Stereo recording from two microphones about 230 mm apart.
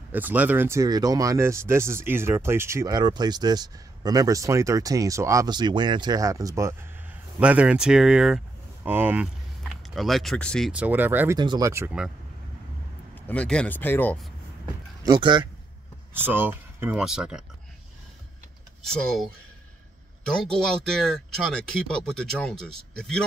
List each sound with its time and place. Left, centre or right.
0.1 s speech: centre
13.1 s speech: centre
15.0 s speech: centre
16.1 s speech: centre
18.9 s speech: centre
20.4 s speech: centre